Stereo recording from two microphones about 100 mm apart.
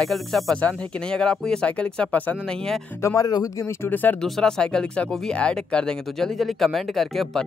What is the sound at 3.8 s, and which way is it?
Speech, 20° left (ahead or behind).